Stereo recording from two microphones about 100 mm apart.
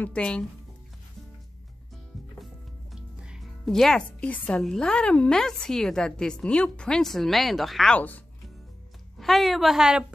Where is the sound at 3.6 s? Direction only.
5° left (ahead or behind).